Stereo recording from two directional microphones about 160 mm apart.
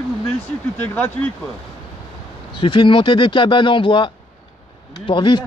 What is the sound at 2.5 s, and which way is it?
Speech, 30° left (ahead or behind).